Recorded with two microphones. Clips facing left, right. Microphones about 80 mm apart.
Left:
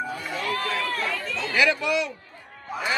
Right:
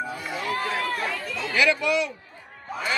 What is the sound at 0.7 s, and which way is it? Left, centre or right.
Run, right.